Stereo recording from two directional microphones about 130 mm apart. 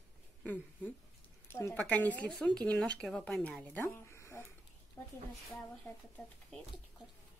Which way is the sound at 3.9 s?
20° left (ahead or behind).